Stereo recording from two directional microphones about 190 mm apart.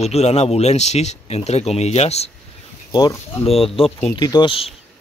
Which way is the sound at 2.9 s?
20° left (ahead or behind).